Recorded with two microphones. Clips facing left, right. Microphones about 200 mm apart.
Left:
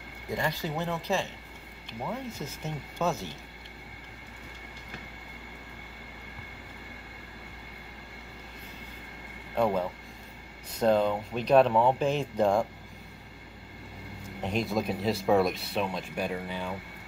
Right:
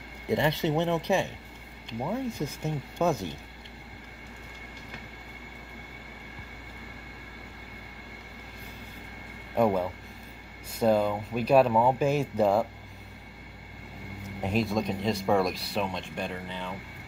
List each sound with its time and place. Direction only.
0.3 s speech: 25° right (ahead or behind)
9.6 s speech: 10° right (ahead or behind)
14.4 s speech: centre (ahead or behind)